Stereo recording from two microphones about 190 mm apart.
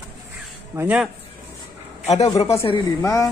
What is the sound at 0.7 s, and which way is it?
Speech, 10° right (ahead or behind).